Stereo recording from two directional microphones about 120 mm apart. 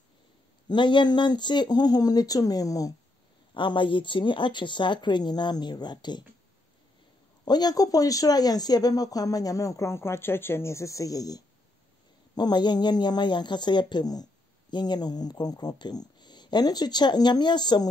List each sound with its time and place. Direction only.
0.7 s speech: 40° left (ahead or behind)
3.5 s speech: 40° left (ahead or behind)
7.4 s speech: 35° left (ahead or behind)